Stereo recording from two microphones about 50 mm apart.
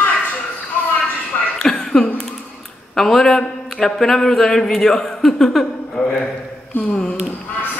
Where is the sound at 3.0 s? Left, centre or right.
Centre.